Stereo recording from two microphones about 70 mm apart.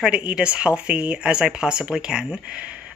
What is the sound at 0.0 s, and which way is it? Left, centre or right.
Speech, centre.